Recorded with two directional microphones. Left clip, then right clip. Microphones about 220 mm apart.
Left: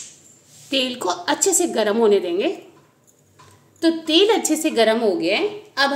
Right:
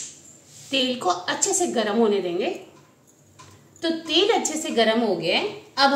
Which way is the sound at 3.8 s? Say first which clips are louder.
Left 5 dB; 50° left (ahead or behind).